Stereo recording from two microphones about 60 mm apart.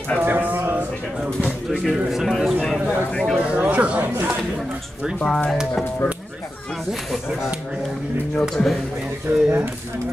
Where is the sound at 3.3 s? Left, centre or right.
Right.